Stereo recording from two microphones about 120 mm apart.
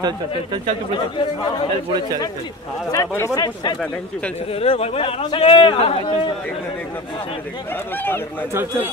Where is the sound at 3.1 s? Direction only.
25° left (ahead or behind).